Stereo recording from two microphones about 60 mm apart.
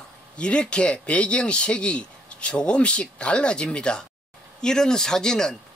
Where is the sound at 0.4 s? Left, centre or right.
Centre.